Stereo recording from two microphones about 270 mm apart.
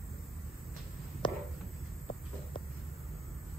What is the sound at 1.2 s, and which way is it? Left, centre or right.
Walk, centre.